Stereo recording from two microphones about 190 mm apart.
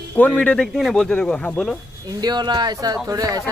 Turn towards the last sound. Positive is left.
turn(degrees=-20)  # may be behind; listen again after turning